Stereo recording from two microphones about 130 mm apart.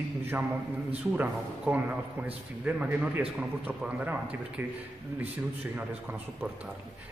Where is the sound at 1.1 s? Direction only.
15° right (ahead or behind).